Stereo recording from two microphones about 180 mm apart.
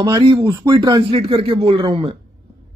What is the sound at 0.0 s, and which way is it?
A man's voice, 25° right (ahead or behind).